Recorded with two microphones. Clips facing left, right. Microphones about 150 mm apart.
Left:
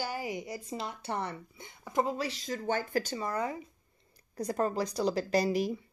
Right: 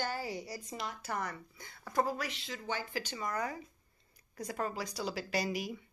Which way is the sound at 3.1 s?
30° left (ahead or behind).